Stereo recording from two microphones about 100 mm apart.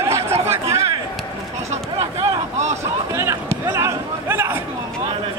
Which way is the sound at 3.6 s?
25° right (ahead or behind).